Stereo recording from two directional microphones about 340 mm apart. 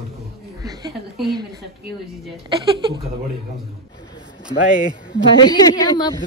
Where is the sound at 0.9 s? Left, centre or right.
Centre.